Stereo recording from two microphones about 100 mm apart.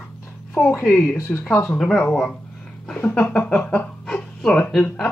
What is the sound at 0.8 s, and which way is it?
Speech, 10° left (ahead or behind).